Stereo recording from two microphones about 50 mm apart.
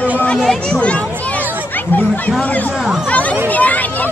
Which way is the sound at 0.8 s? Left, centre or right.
Left.